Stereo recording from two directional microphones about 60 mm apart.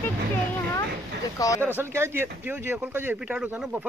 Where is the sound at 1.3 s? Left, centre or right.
Left.